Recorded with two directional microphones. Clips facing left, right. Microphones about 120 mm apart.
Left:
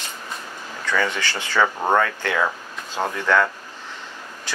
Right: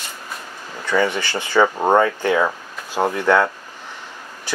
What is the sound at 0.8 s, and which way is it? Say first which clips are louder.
Speech: right 4 dB; 15° right (ahead or behind).